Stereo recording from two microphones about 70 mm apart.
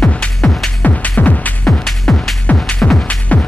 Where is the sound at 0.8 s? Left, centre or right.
Left.